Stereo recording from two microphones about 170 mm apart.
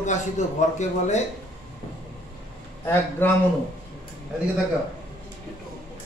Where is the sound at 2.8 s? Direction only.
15° left (ahead or behind).